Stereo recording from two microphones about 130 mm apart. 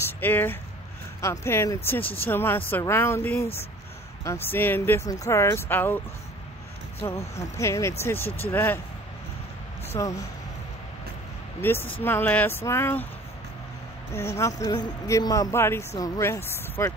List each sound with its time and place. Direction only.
0.2 s speech: 15° left (ahead or behind)
7.1 s speech: 20° left (ahead or behind)
9.9 s speech: 25° left (ahead or behind)
11.6 s speech: 15° left (ahead or behind)
14.1 s speech: 20° left (ahead or behind)